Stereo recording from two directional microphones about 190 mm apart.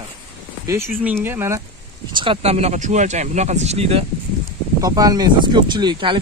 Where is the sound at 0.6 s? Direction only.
15° right (ahead or behind).